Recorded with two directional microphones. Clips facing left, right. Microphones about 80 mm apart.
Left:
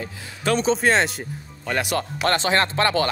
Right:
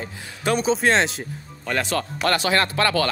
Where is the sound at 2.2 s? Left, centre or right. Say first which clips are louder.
Even; left.